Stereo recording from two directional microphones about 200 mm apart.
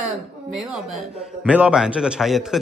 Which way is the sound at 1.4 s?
5° right (ahead or behind).